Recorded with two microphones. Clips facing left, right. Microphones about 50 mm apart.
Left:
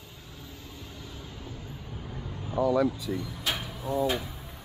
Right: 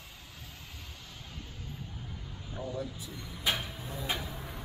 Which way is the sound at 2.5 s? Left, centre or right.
Left.